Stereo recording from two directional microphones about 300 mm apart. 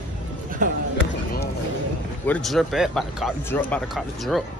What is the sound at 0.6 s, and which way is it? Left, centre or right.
Speech, right.